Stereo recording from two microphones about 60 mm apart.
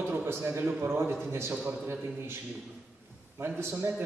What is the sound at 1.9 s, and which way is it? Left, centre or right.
Speech, right.